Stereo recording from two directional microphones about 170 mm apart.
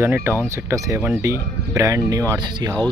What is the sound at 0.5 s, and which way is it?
Speech, 20° right (ahead or behind).